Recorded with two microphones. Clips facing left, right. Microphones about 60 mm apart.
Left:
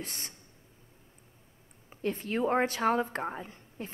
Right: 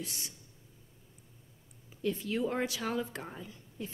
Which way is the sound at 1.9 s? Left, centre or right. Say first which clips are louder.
Left 1 dB; left.